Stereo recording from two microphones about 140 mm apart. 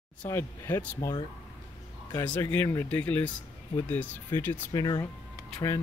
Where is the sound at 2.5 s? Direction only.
15° left (ahead or behind).